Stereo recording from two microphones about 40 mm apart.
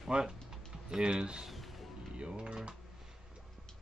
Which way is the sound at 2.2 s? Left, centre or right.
Right.